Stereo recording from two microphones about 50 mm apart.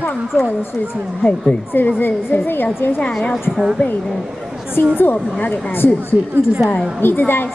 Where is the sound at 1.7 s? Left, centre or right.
Left.